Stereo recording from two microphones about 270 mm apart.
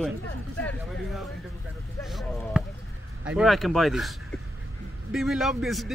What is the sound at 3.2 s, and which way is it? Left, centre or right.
A man's voice, centre.